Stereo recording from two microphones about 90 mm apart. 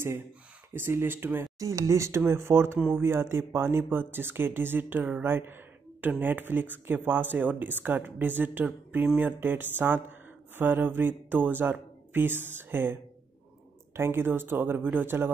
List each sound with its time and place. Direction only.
0.7 s speech: 25° right (ahead or behind)
1.6 s speech: 40° right (ahead or behind)
13.9 s speech: 25° right (ahead or behind)